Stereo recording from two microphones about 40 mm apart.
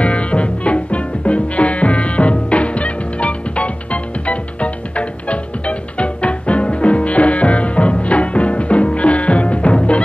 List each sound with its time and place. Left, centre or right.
0.0 s music: left